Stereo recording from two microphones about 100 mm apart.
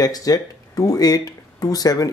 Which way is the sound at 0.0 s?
40° left (ahead or behind).